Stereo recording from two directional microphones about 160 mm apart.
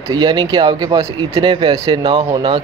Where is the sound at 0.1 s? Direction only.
30° right (ahead or behind).